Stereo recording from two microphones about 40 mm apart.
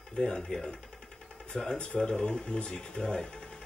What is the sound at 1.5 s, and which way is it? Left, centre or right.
Speech, centre.